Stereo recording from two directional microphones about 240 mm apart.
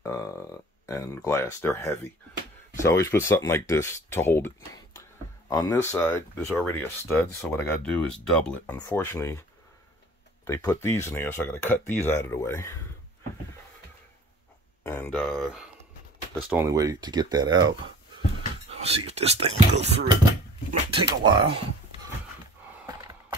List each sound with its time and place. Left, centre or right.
0.0 s a sound: centre
2.8 s speech: centre
10.4 s speech: centre
14.8 s a sound: centre
16.4 s speech: centre; by 19.9 s right
20.9 s speech: centre